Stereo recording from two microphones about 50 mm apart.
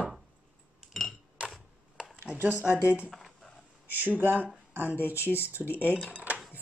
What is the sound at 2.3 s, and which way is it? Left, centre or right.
Speech, right.